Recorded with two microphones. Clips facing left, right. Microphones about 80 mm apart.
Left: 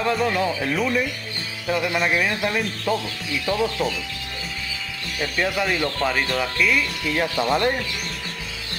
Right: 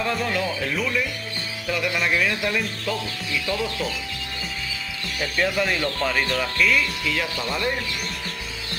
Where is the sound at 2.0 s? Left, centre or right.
Left.